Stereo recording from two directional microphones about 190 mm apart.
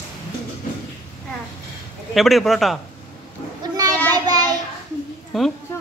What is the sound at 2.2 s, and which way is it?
Speech, centre (ahead or behind).